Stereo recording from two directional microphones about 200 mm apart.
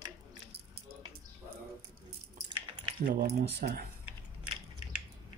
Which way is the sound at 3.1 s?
45° right (ahead or behind).